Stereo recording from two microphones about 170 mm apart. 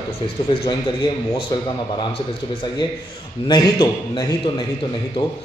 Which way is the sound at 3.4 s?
25° left (ahead or behind).